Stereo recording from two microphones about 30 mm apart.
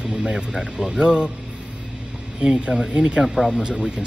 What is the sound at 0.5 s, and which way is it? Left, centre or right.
Speech, centre.